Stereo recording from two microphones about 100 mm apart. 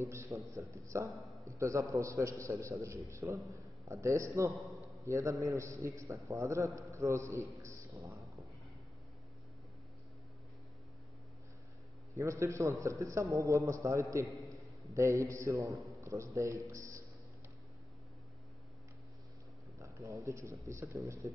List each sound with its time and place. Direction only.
0.0 s a man's voice: 30° right (ahead or behind)
4.5 s a man's voice: centre (ahead or behind)
5.0 s a man's voice: 30° right (ahead or behind)
12.2 s a man's voice: 30° right (ahead or behind)
16.0 s a sound: 30° right (ahead or behind)
16.3 s a man's voice: 30° right (ahead or behind)
19.8 s a man's voice: 30° right (ahead or behind)